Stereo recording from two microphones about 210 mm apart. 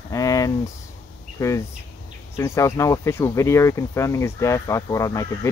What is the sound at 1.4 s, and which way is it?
Speech, 15° left (ahead or behind).